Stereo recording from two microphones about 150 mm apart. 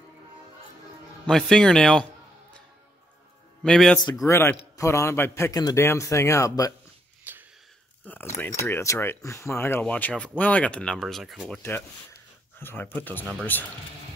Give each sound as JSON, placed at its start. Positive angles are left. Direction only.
{"t": 1.2, "sound": "speech", "side_deg": 5}
{"t": 3.6, "sound": "speech", "side_deg": 5}
{"t": 4.3, "sound": "a man's voice", "side_deg": 15}
{"t": 7.3, "sound": "a sound", "side_deg": -10}
{"t": 8.0, "sound": "speech", "side_deg": 10}
{"t": 12.5, "sound": "speech", "side_deg": 15}